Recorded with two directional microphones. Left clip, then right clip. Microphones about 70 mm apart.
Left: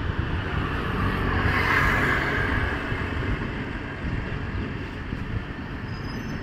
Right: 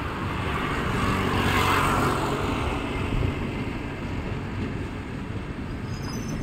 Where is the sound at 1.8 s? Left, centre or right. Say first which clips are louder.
Left 1 dB; left.